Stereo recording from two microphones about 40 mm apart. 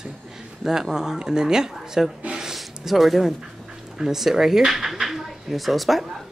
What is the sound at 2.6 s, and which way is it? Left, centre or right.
A man's voice, centre.